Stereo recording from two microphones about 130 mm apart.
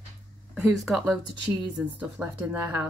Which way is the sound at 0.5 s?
Centre (ahead or behind).